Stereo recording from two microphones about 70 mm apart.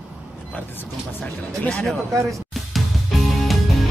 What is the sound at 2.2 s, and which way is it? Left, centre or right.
Music, centre.